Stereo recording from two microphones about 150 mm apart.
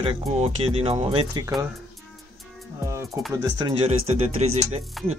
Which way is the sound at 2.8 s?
20° right (ahead or behind).